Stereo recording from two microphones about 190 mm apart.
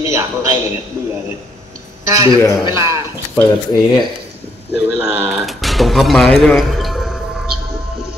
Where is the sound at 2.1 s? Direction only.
20° right (ahead or behind).